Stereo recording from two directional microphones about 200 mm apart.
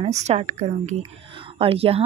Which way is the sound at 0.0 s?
35° right (ahead or behind).